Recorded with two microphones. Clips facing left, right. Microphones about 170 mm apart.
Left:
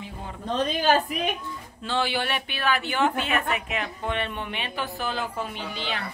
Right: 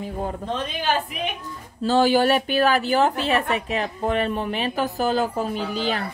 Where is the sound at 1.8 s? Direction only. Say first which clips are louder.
Right 10 dB; 40° right (ahead or behind).